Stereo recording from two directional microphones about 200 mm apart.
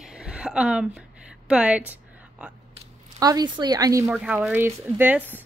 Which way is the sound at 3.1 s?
20° right (ahead or behind).